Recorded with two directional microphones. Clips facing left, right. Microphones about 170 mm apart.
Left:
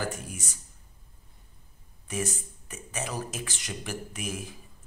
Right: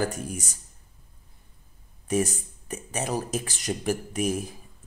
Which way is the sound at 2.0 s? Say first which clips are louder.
Right 7 dB; 35° right (ahead or behind).